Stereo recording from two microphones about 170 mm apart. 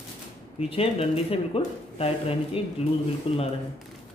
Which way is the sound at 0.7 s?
35° left (ahead or behind).